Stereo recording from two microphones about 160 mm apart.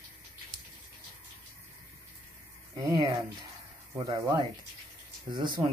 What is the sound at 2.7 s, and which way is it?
Speech, 25° right (ahead or behind).